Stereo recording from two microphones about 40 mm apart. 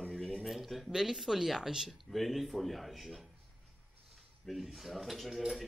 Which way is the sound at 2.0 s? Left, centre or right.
Centre.